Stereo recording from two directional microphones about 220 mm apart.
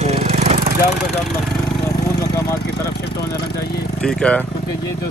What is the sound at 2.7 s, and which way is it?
Speech, 45° left (ahead or behind).